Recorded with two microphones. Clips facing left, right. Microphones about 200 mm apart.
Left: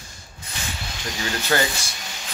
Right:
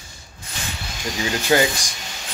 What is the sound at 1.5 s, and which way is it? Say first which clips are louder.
Speech: right 5 dB; 20° right (ahead or behind).